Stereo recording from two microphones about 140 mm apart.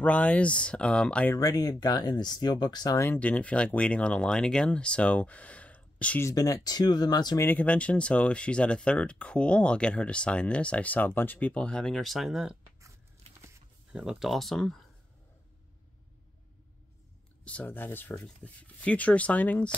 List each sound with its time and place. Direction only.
0.0 s speech: 10° left (ahead or behind)
1.3 s speech: 25° left (ahead or behind)
3.1 s speech: 10° left (ahead or behind)
6.2 s speech: 25° left (ahead or behind)
7.4 s speech: 10° left (ahead or behind)
13.9 s speech: 5° right (ahead or behind)
17.5 s speech: 10° left (ahead or behind)